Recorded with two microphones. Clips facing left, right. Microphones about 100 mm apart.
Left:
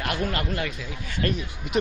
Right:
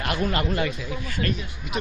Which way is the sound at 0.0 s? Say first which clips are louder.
Right 2 dB; 5° right (ahead or behind).